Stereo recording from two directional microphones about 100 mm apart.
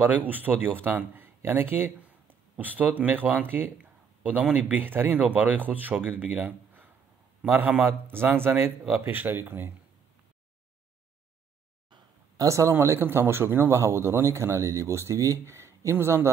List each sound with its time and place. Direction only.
0.0 s speech: 15° right (ahead or behind)
12.4 s speech: 30° right (ahead or behind)